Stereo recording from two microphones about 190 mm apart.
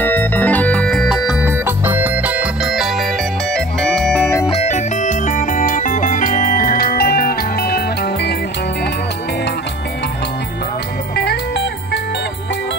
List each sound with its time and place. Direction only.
0.0 s music: 10° left (ahead or behind)
4.5 s music: 35° left (ahead or behind); by 8.4 s 60° left (ahead or behind)
11.1 s music: 60° left (ahead or behind)